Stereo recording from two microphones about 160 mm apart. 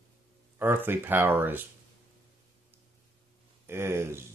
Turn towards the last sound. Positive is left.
turn(degrees=-15)  # may be behind; listen again after turning